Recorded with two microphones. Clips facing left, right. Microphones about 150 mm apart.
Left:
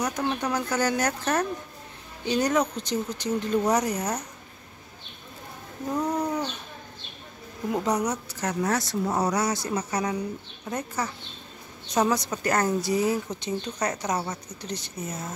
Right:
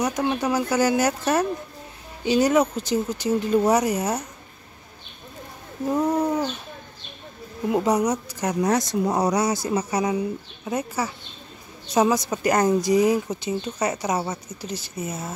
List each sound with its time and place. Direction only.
0.0 s speech: 10° right (ahead or behind)
6.1 s speech: 25° right (ahead or behind)
7.7 s speech: 10° right (ahead or behind)